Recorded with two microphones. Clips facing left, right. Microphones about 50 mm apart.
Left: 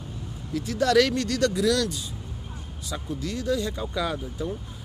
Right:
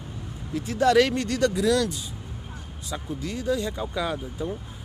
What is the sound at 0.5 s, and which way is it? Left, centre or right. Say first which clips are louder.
Speech: right 2 dB; centre.